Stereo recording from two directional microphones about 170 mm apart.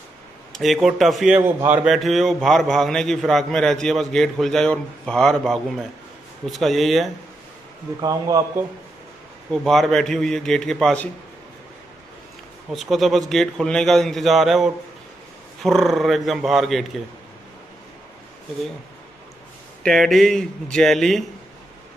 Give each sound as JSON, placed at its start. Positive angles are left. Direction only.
{"t": 0.5, "sound": "a man's voice", "side_deg": 0}
{"t": 8.0, "sound": "speech", "side_deg": -20}
{"t": 9.5, "sound": "a man's voice", "side_deg": 0}
{"t": 12.7, "sound": "a man's voice", "side_deg": 0}
{"t": 19.8, "sound": "a man's voice", "side_deg": 0}